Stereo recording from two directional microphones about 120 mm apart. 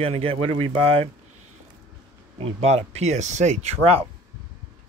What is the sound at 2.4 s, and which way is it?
Speech, 65° right (ahead or behind).